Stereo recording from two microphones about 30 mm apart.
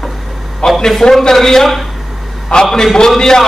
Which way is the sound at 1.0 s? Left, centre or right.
Centre.